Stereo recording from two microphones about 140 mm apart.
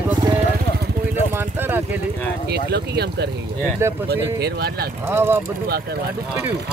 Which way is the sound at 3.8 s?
20° right (ahead or behind).